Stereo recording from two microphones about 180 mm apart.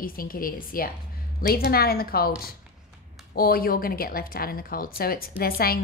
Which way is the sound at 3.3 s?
55° left (ahead or behind).